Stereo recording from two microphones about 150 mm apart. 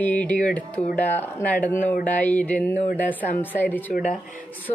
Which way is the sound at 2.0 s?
60° left (ahead or behind).